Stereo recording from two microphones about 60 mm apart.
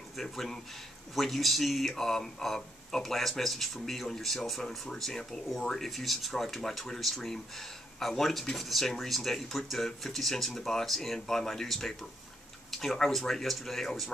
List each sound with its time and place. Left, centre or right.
0.1 s speech: centre